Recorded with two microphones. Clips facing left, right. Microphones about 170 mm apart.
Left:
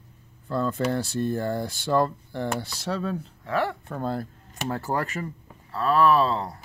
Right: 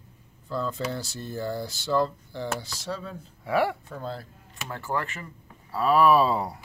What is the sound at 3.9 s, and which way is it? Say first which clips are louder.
Speech: left 6 dB; 55° left (ahead or behind).